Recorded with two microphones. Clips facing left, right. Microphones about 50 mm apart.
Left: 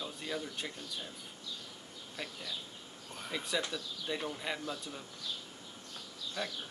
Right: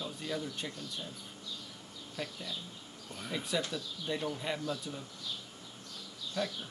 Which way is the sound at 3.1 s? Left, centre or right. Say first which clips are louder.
Right 1 dB; centre.